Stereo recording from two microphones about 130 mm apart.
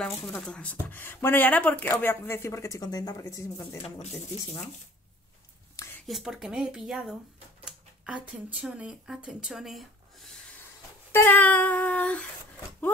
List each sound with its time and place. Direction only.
0.0 s speech: 5° left (ahead or behind); by 3.8 s 25° left (ahead or behind)
6.0 s speech: centre (ahead or behind)
11.1 s a sound: 15° left (ahead or behind)